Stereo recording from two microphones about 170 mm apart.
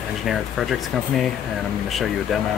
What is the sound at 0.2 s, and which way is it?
Speech, centre (ahead or behind).